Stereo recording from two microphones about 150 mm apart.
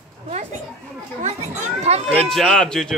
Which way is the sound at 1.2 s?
45° right (ahead or behind).